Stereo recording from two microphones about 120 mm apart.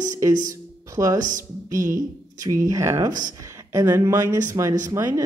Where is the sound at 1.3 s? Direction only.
90° right.